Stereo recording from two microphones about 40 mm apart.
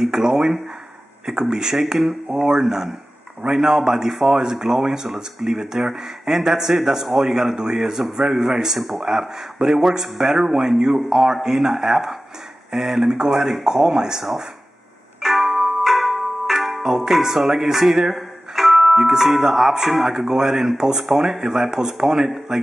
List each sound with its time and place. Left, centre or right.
0.0 s speech: centre
15.1 s music: centre
16.8 s speech: centre